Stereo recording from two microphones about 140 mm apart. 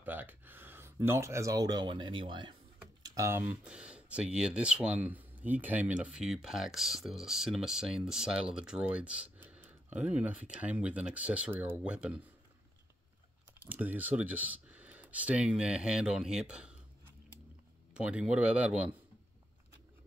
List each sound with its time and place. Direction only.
0.0 s speech: 15° right (ahead or behind); by 2.5 s 35° right (ahead or behind)
3.0 s speech: 20° right (ahead or behind)
13.6 s speech: 10° right (ahead or behind)